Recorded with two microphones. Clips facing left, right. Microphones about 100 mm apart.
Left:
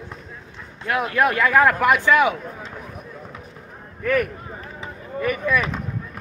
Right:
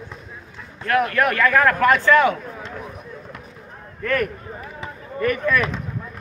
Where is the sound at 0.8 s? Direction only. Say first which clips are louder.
Right 1 dB; 15° left (ahead or behind).